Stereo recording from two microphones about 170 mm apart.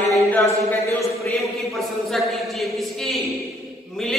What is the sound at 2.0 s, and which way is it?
Mantra, centre (ahead or behind).